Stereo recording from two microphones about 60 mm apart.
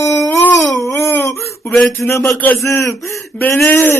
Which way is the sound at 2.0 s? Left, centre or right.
Left.